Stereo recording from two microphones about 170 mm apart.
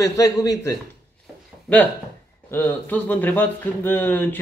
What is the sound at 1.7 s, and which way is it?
A man's voice, 5° left (ahead or behind).